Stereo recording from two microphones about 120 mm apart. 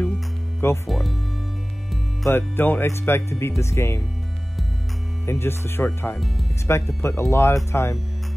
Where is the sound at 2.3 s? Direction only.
20° left (ahead or behind).